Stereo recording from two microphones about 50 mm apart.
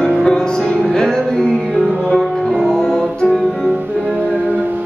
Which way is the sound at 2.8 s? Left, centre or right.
Centre.